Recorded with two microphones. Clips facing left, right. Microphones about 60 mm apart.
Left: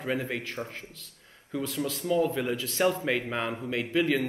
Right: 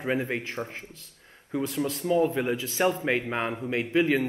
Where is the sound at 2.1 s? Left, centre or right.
Right.